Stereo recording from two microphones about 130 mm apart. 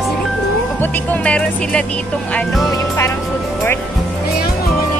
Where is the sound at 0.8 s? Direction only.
15° left (ahead or behind).